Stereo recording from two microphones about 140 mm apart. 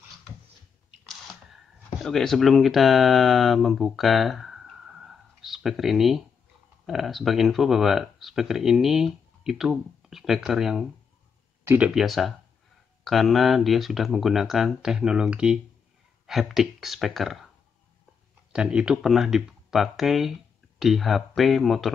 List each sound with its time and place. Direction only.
1.0 s a sound: 5° left (ahead or behind)
2.0 s speech: centre (ahead or behind)
11.6 s speech: 15° right (ahead or behind)
11.9 s speech: centre (ahead or behind)
18.5 s speech: 5° right (ahead or behind)